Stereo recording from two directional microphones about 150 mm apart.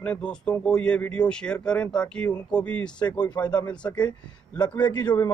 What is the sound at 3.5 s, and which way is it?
Speech, 25° left (ahead or behind).